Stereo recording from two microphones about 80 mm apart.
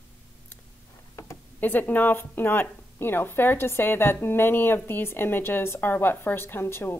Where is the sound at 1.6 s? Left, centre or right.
Left.